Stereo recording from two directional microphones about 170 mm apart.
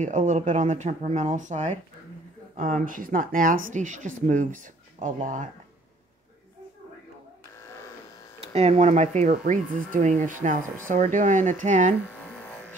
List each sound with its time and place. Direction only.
0.0 s speech: 45° right (ahead or behind)
8.4 s speech: 40° right (ahead or behind)